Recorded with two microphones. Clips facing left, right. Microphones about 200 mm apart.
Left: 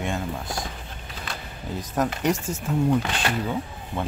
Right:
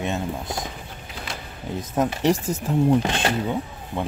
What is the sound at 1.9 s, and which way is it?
Speech, 20° right (ahead or behind).